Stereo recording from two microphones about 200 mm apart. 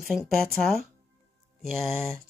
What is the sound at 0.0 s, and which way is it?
Speech, centre (ahead or behind).